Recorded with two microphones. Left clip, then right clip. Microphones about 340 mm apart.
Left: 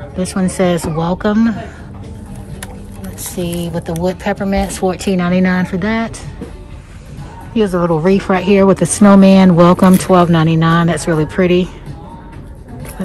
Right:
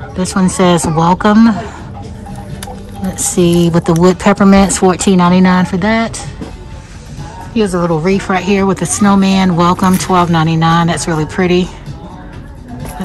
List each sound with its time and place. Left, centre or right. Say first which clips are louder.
0.2 s a woman's voice: right 3 dB; centre
3.2 s speech: right 10 dB; centre
7.5 s a woman's voice: even; centre